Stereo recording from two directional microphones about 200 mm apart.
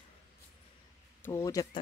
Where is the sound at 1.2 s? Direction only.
15° left (ahead or behind).